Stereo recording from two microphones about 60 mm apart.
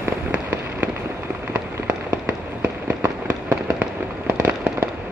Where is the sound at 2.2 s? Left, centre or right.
Right.